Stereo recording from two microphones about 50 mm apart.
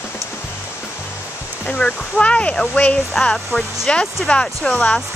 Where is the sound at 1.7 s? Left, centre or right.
Left.